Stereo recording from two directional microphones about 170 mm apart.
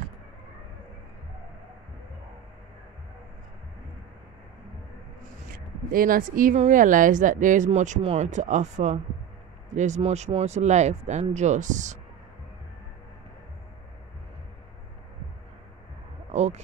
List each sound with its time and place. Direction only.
5.9 s speech: 55° right (ahead or behind)
16.3 s speech: 40° right (ahead or behind)